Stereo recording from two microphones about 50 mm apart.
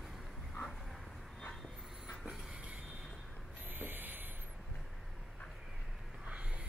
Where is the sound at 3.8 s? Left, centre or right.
Right.